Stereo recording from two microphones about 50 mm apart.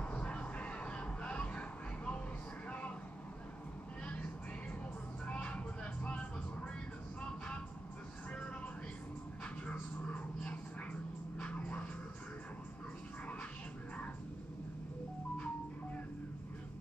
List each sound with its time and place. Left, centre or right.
0.0 s a sound: left
4.0 s vehicle: left
7.2 s music: left
9.7 s dog: left